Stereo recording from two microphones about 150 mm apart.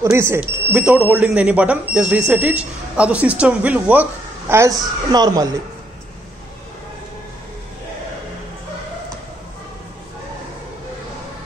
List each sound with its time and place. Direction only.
0.0 s speech: 20° right (ahead or behind)